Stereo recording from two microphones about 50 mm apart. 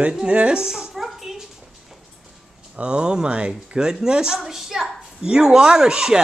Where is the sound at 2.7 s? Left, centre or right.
Centre.